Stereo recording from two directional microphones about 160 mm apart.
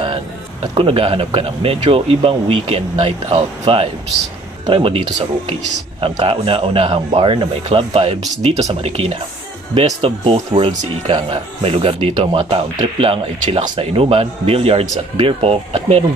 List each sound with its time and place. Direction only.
0.7 s speech: 35° right (ahead or behind)